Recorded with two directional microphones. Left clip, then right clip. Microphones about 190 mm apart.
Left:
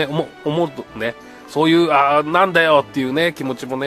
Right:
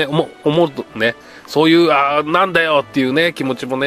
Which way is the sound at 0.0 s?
20° right (ahead or behind).